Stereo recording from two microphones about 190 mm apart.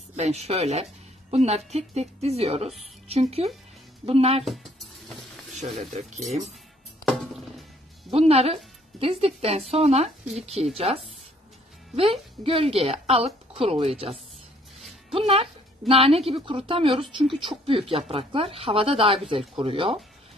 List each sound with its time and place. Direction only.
0.1 s a woman's voice: 35° right (ahead or behind)
5.5 s a woman's voice: 35° right (ahead or behind)
7.1 s music: centre (ahead or behind)
8.1 s a woman's voice: 30° right (ahead or behind)
15.1 s a woman's voice: 30° right (ahead or behind)